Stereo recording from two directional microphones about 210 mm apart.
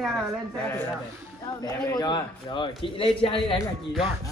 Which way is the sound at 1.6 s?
20° left (ahead or behind).